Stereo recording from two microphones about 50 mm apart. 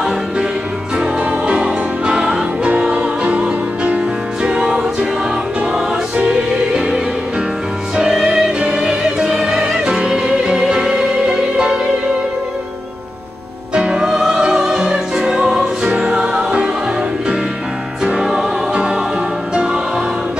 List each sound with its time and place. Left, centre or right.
1.4 s music: centre
4.6 s music: centre
5.7 s music: right
7.9 s music: centre
13.7 s music: centre
18.0 s music: centre
18.7 s music: right